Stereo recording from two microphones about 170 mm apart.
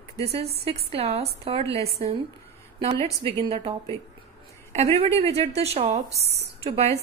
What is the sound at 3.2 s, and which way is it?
Speech, 35° right (ahead or behind).